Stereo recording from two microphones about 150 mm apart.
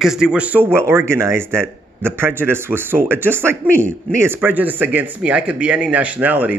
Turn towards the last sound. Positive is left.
turn(degrees=-10)  # may be behind; listen again after turning